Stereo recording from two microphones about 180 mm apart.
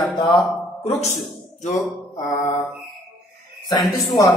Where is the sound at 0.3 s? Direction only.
30° left (ahead or behind).